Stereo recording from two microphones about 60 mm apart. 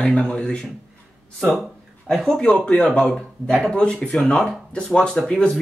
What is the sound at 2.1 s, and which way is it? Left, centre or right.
Speech, centre.